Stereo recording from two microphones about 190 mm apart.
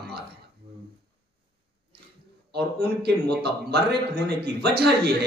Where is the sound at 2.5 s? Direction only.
60° right (ahead or behind).